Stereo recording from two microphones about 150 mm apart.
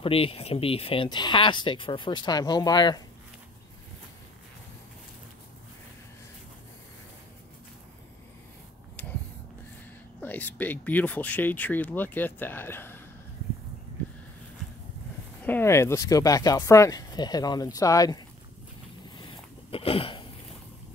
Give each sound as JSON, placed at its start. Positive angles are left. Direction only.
{"t": 0.0, "sound": "speech", "side_deg": 40}
{"t": 10.2, "sound": "speech", "side_deg": 10}
{"t": 15.4, "sound": "speech", "side_deg": 15}
{"t": 19.1, "sound": "a sound", "side_deg": 35}